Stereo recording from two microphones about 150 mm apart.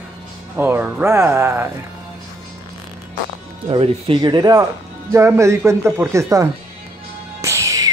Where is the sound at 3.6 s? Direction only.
35° right (ahead or behind); by 6.5 s 20° right (ahead or behind).